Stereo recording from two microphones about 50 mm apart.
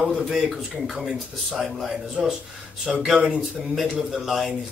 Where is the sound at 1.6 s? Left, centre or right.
Centre.